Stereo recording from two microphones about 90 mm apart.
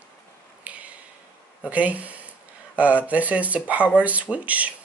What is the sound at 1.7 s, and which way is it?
Speech, 15° right (ahead or behind).